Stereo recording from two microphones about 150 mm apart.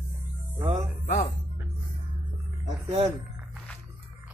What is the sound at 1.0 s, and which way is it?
Speech, 50° left (ahead or behind).